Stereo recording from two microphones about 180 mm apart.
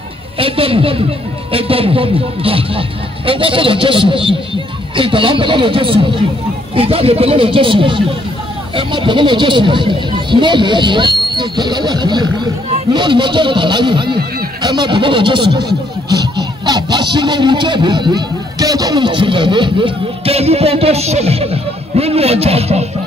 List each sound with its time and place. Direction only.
0.4 s speech: 30° right (ahead or behind)